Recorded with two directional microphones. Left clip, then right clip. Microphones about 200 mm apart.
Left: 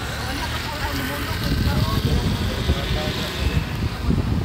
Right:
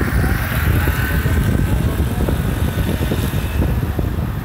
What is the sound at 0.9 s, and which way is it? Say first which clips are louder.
Vehicle: right 4 dB; 50° right (ahead or behind).